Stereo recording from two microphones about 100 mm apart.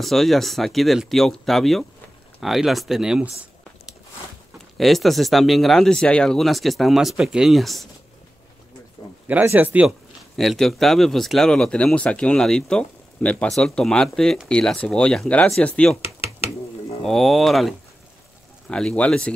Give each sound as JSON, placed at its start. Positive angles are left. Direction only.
{"t": 0.0, "sound": "a man's voice", "side_deg": 0}
{"t": 4.7, "sound": "a man's voice", "side_deg": 0}
{"t": 9.0, "sound": "a sound", "side_deg": 45}
{"t": 9.3, "sound": "speech", "side_deg": -20}
{"t": 9.8, "sound": "a man's voice", "side_deg": 0}
{"t": 17.0, "sound": "a man's voice", "side_deg": 0}